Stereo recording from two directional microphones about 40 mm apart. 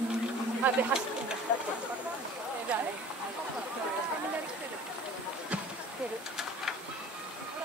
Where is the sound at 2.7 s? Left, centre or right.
Right.